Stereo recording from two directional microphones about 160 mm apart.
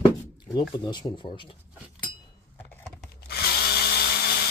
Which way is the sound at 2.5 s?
10° left (ahead or behind).